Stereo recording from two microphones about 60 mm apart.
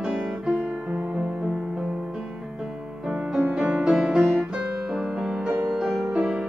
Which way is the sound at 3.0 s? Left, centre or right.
Centre.